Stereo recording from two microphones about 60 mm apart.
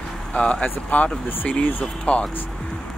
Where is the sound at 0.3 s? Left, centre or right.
Centre.